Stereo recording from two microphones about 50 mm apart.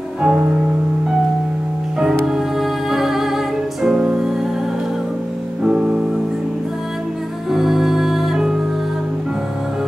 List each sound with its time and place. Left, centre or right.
0.2 s music: right
2.2 s music: centre
5.6 s music: centre
7.5 s music: centre